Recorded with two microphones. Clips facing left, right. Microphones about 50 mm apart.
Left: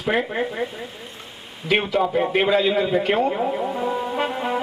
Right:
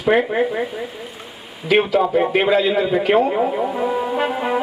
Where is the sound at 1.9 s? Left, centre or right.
Centre.